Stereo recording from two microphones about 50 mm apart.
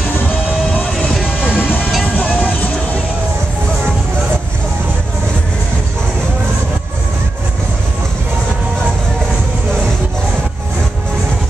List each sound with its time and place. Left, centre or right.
1.2 s vehicle: centre
2.0 s music: left